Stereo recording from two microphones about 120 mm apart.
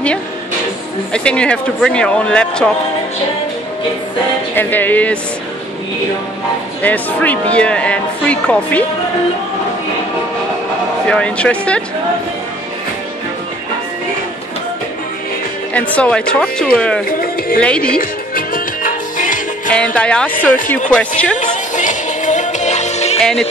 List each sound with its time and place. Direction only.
1.1 s speech: 10° left (ahead or behind)
4.6 s speech: 15° left (ahead or behind)
6.8 s speech: 15° left (ahead or behind)
11.1 s speech: 10° left (ahead or behind)
15.7 s speech: 10° left (ahead or behind)
18.9 s music: 90° left
19.7 s speech: 10° left (ahead or behind)
21.4 s music: 90° left; by 23.2 s 65° left (ahead or behind)